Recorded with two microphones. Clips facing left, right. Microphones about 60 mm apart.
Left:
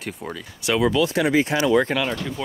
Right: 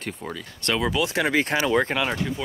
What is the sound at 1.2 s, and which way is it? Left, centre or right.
Speech, right.